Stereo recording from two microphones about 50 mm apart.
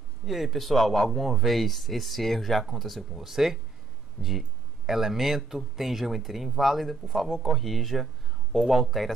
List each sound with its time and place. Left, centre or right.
0.2 s speech: centre